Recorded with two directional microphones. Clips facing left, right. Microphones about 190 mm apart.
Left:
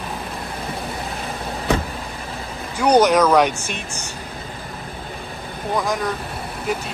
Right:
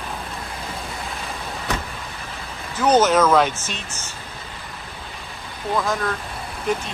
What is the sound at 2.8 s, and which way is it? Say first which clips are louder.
Speech: left 2 dB; 15° left (ahead or behind).